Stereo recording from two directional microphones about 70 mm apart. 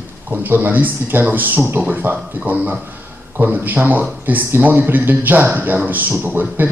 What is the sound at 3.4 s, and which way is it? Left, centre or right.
A man's voice, right.